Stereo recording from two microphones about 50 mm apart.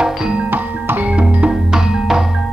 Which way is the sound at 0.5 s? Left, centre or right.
Right.